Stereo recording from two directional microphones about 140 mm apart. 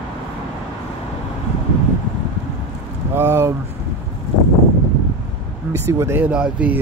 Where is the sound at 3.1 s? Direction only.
15° right (ahead or behind).